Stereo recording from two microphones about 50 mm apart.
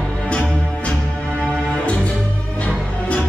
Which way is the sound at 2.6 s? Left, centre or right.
Left.